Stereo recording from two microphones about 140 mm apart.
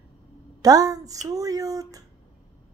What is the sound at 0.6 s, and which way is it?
A woman's voice, 25° right (ahead or behind).